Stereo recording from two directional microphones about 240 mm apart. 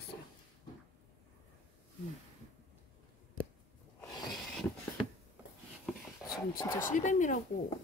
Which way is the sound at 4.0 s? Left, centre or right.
Centre.